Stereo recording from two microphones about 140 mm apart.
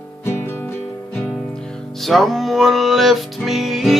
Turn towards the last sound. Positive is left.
turn(degrees=0)  # may be behind; listen again after turning